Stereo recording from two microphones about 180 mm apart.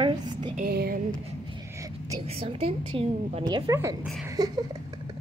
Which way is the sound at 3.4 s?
20° right (ahead or behind).